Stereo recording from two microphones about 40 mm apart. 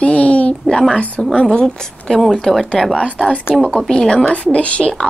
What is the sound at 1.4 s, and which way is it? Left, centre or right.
A woman's voice, left.